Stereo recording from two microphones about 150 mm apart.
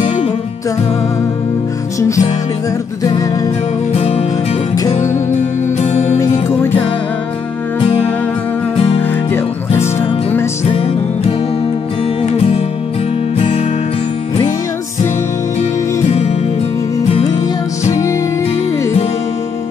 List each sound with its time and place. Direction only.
2.0 s music: 20° left (ahead or behind)
3.9 s music: 45° left (ahead or behind)
5.8 s music: 50° left (ahead or behind)
7.8 s music: 40° left (ahead or behind)
9.0 s music: 15° left (ahead or behind)
10.6 s music: 40° left (ahead or behind)
15.6 s music: 45° left (ahead or behind)